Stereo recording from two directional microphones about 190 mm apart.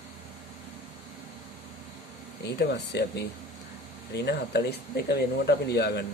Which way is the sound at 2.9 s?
65° left (ahead or behind).